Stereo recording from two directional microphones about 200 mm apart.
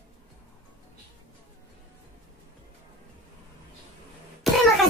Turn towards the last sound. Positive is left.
turn(degrees=0)  # may be behind; listen again after turning